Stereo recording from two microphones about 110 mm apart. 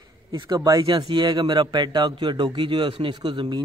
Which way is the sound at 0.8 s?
40° right (ahead or behind).